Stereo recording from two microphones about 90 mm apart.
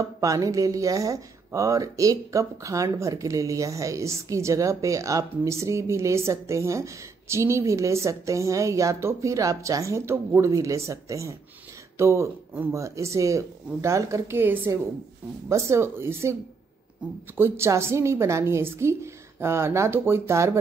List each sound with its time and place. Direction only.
0.0 s speech: 40° right (ahead or behind)
17.4 s speech: 30° right (ahead or behind)